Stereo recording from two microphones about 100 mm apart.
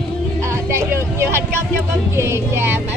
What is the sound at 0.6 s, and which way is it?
Vehicle, 25° right (ahead or behind).